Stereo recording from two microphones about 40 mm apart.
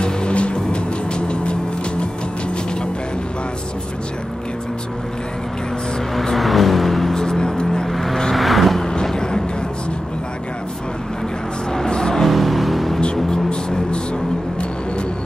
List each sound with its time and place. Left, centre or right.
0.0 s music: left
6.3 s vehicle: centre
7.2 s vehicle: centre
9.0 s vehicle: centre
11.7 s music: centre
12.3 s music: centre
13.0 s music: left